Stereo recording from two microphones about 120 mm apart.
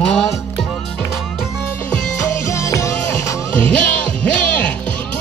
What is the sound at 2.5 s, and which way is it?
Music, 25° left (ahead or behind).